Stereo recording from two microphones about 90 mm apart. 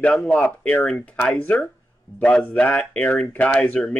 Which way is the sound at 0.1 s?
15° left (ahead or behind).